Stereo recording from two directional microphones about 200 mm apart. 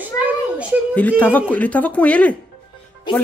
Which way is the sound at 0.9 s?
10° left (ahead or behind).